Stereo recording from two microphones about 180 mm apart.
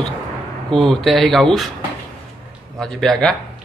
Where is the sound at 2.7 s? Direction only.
Centre (ahead or behind).